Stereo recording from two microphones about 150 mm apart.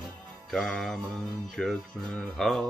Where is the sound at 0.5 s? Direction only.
5° left (ahead or behind).